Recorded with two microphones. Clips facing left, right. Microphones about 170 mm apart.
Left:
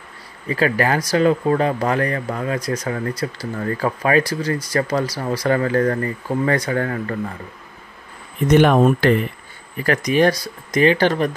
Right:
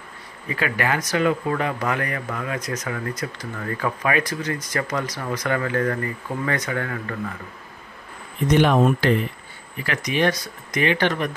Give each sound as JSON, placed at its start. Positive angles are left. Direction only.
{"t": 0.5, "sound": "speech", "side_deg": 35}
{"t": 8.5, "sound": "speech", "side_deg": 50}